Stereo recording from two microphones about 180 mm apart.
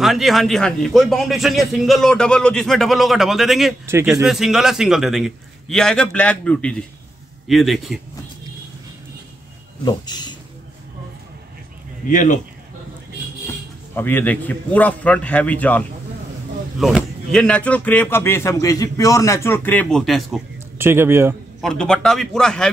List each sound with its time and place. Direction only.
0.0 s a man's voice: centre (ahead or behind)
3.8 s speech: 15° right (ahead or behind)
4.1 s a man's voice: centre (ahead or behind)
9.8 s speech: 25° left (ahead or behind)
12.1 s a man's voice: 45° left (ahead or behind)
13.9 s a man's voice: 10° left (ahead or behind)
16.8 s a man's voice: centre (ahead or behind)
20.7 s speech: 15° right (ahead or behind)
21.5 s a man's voice: 5° left (ahead or behind)